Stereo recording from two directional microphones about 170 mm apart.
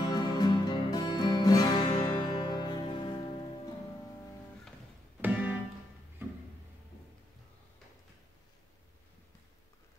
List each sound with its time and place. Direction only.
0.0 s music: 25° left (ahead or behind)
5.2 s music: 10° right (ahead or behind)